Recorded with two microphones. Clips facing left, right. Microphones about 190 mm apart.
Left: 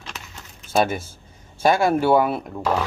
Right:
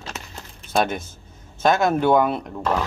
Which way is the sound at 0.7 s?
5° left (ahead or behind).